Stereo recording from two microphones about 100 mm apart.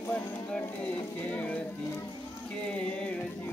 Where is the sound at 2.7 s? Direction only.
10° left (ahead or behind).